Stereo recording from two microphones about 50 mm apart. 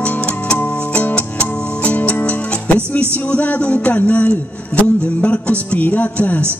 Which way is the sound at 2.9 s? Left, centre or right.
Left.